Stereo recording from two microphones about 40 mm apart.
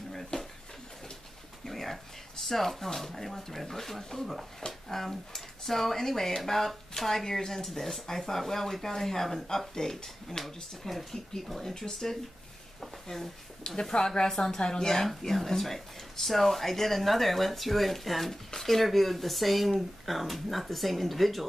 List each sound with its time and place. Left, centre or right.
0.1 s a sound: centre
1.7 s speech: centre
13.7 s speech: centre